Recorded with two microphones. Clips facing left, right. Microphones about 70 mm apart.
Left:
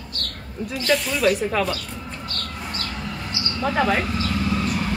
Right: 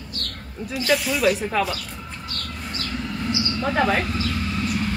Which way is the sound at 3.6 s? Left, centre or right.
Centre.